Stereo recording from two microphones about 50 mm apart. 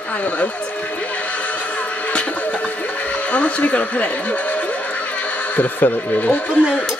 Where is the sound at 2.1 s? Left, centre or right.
Left.